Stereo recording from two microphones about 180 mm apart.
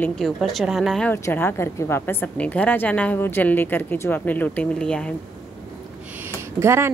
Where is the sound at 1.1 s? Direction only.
10° left (ahead or behind).